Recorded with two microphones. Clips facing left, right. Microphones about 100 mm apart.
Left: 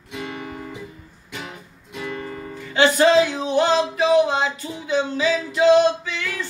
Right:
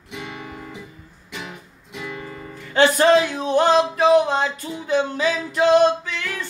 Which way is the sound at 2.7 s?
50° right (ahead or behind).